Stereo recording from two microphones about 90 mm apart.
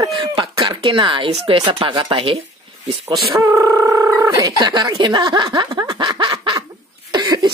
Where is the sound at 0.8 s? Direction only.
65° right (ahead or behind).